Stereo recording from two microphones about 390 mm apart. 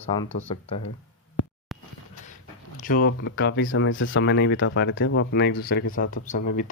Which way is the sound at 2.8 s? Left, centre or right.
Left.